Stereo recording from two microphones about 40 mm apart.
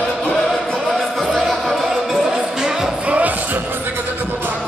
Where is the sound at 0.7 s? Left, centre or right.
Centre.